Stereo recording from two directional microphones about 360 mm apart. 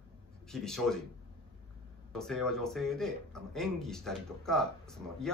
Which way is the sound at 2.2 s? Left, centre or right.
Centre.